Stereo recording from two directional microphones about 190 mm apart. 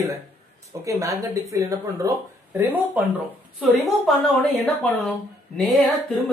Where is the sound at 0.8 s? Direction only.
15° right (ahead or behind).